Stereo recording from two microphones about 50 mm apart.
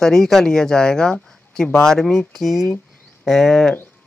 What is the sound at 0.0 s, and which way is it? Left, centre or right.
Speech, centre.